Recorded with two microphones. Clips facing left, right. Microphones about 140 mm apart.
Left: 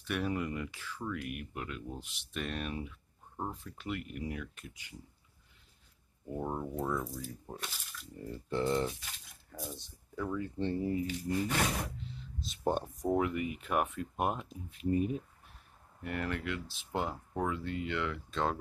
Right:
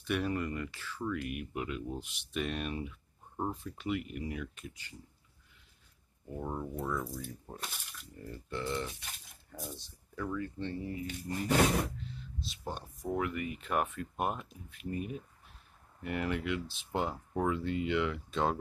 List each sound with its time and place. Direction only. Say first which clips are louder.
0.0 s speech: right 1 dB; centre (ahead or behind)
1.5 s speech: right 4 dB; 10° right (ahead or behind)
6.3 s speech: left 2 dB; 20° left (ahead or behind)
7.2 s speech: left 1 dB; 5° left (ahead or behind)
8.2 s speech: left 5 dB; 30° left (ahead or behind)
9.5 s speech: left 1 dB; 5° right (ahead or behind)
10.1 s speech: left 1 dB; 15° left (ahead or behind)
10.6 s speech: left 5 dB; 35° left (ahead or behind)
11.1 s a sound: left 2 dB; 40° right (ahead or behind)
12.4 s speech: left 10 dB; 50° left (ahead or behind)
13.1 s speech: left 3 dB; 20° left (ahead or behind)
16.0 s speech: right 2 dB; 5° right (ahead or behind)